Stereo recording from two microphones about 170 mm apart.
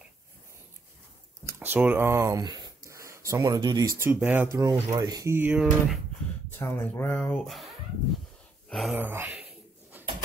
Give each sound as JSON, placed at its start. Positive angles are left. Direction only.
{"t": 1.4, "sound": "a sound", "side_deg": -10}
{"t": 4.0, "sound": "speech", "side_deg": -10}
{"t": 6.6, "sound": "speech", "side_deg": 15}
{"t": 7.3, "sound": "speech", "side_deg": 0}
{"t": 8.6, "sound": "gasp", "side_deg": 0}
{"t": 8.9, "sound": "a sound", "side_deg": -15}